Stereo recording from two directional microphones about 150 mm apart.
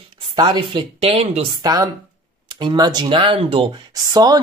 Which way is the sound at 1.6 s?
25° right (ahead or behind).